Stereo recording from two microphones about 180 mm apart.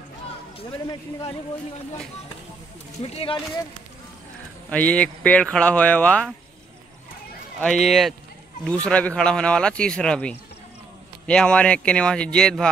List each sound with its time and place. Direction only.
0.6 s speech: 30° left (ahead or behind)
3.0 s speech: 30° left (ahead or behind)
4.6 s speech: 5° left (ahead or behind)
7.6 s a man's voice: centre (ahead or behind)